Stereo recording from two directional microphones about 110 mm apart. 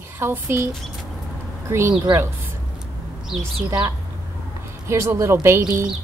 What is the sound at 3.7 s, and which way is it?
Speech, 30° right (ahead or behind).